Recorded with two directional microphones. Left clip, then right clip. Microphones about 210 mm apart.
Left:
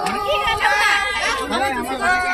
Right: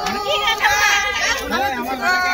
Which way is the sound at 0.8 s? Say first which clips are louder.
Right 1 dB; 25° left (ahead or behind).